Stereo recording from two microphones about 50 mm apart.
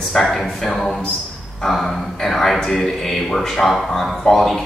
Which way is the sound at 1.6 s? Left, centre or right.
Centre.